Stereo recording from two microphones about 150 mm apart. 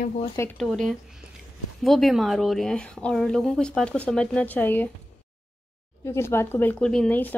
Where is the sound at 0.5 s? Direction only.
5° left (ahead or behind).